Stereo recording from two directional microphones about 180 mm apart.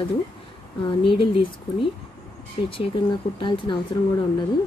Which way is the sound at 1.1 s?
30° left (ahead or behind).